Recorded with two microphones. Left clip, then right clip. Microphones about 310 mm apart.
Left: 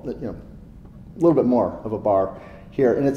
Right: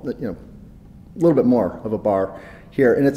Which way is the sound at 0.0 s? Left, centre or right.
Right.